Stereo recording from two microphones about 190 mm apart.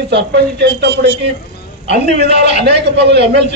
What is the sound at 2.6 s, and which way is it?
Speech, 65° right (ahead or behind).